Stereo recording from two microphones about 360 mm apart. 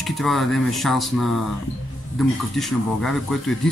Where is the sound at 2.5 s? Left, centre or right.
Centre.